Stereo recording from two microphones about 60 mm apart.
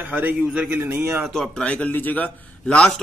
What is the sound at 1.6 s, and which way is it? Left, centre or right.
A man's voice, left.